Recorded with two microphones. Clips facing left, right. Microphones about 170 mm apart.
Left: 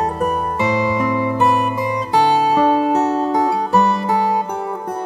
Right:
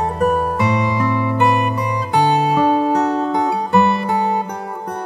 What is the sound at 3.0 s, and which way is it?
Music, 5° left (ahead or behind).